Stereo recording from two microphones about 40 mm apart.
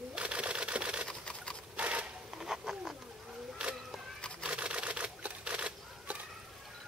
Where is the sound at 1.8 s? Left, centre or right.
Right.